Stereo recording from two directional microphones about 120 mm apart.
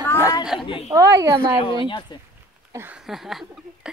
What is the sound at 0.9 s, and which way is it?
Speech, 30° right (ahead or behind).